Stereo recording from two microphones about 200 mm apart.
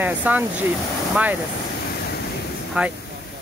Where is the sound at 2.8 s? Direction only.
5° right (ahead or behind).